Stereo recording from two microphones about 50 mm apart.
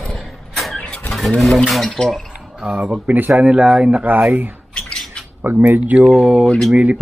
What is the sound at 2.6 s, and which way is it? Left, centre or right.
Speech, right.